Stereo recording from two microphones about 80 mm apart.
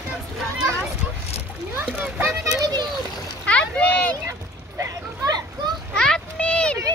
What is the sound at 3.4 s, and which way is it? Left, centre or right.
Splash, centre.